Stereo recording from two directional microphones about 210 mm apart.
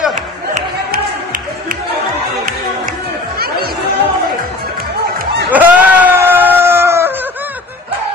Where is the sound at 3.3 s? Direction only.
50° right (ahead or behind).